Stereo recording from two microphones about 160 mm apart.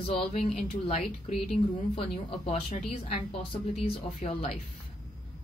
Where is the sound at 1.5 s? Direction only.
35° left (ahead or behind).